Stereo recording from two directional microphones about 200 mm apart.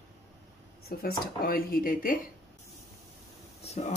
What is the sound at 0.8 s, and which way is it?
Speech, 50° left (ahead or behind).